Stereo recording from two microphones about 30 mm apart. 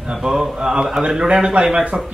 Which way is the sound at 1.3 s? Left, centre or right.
Right.